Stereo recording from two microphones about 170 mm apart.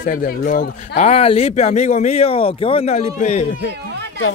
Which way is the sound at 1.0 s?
40° left (ahead or behind).